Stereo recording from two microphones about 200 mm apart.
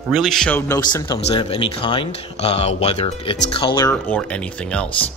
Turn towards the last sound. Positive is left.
turn(degrees=5)  # may be behind; listen again after turning